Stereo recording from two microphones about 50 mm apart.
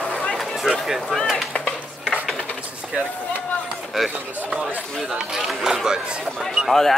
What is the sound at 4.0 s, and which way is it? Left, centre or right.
Speech, centre.